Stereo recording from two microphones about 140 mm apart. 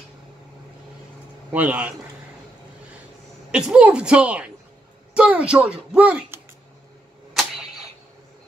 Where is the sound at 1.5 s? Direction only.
10° right (ahead or behind).